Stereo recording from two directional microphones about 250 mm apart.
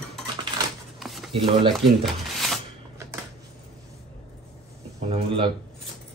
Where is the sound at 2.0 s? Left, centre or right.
Centre.